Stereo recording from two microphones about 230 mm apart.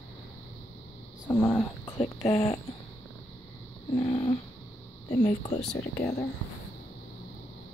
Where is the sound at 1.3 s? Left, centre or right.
Centre.